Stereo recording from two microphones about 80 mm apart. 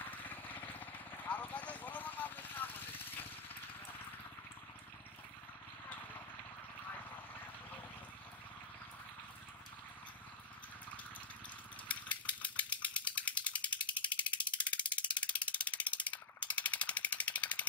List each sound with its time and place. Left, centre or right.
0.0 s vehicle: left
5.9 s vehicle: left
11.9 s mechanisms: centre
13.7 s ratchet: centre